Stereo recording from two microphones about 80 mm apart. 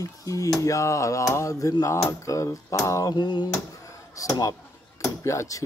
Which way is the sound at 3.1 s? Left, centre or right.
Left.